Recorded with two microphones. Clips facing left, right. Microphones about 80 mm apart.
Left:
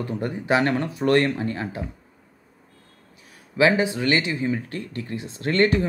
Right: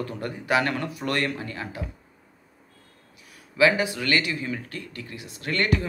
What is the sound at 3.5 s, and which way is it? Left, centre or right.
Speech, left.